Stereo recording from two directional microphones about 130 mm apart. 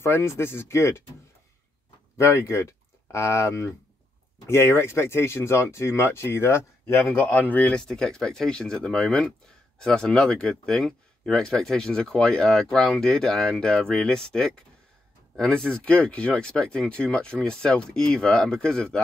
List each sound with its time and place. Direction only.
0.0 s speech: 20° left (ahead or behind)
2.1 s speech: 20° left (ahead or behind); by 18.9 s 5° left (ahead or behind)